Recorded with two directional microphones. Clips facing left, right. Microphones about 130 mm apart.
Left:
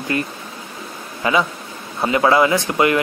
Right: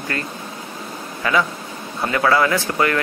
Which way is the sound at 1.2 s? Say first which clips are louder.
Left 1 dB; 20° left (ahead or behind).